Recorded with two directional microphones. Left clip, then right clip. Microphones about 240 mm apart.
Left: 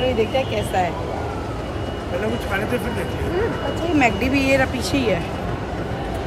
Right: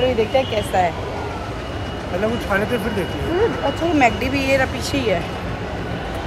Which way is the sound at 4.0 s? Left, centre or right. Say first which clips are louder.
Even; centre.